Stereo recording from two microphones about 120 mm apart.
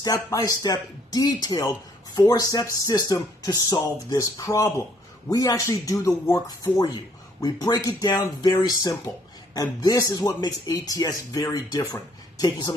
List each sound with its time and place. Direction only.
0.0 s speech: 30° left (ahead or behind)